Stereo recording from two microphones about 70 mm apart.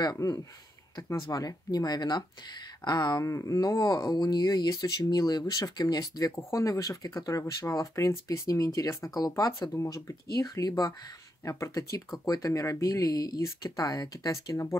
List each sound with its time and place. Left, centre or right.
0.0 s speech: left
3.3 s speech: left
6.3 s speech: left
14.5 s speech: left